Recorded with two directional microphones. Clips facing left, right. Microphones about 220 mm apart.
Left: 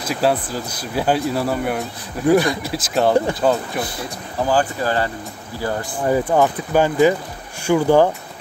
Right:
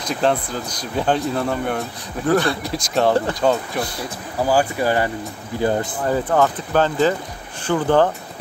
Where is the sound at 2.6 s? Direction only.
Centre (ahead or behind).